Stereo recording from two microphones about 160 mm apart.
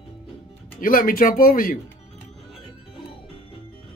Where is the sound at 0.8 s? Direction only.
60° left (ahead or behind).